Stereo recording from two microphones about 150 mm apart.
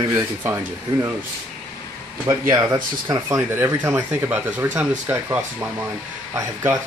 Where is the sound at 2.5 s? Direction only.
25° right (ahead or behind).